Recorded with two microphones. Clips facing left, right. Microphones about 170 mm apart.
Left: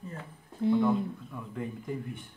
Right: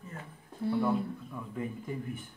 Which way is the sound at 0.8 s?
5° right (ahead or behind).